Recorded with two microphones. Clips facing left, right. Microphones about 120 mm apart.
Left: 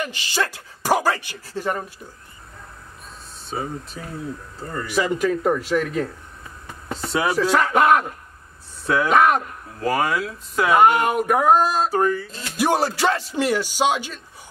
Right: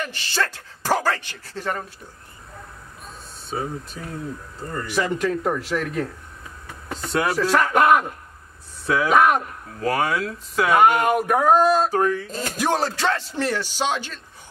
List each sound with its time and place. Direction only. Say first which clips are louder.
0.0 s speech: left 1 dB; 15° left (ahead or behind)
3.4 s speech: even; centre (ahead or behind)
12.3 s speech: right 6 dB; 45° right (ahead or behind)
12.5 s speech: left 3 dB; 10° left (ahead or behind)